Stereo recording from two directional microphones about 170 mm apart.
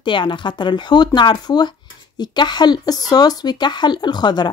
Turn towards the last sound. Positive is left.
turn(degrees=25)  # may be behind; listen again after turning